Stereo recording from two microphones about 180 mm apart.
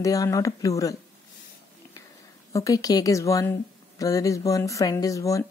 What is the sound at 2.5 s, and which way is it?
Speech, 20° left (ahead or behind).